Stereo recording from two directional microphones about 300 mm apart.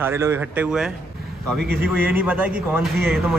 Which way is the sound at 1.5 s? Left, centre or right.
Right.